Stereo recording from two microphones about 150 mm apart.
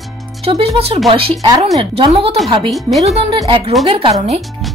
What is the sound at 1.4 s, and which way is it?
Speech, 30° right (ahead or behind).